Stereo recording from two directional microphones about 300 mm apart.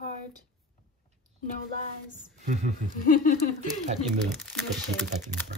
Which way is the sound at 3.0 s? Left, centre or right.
Left.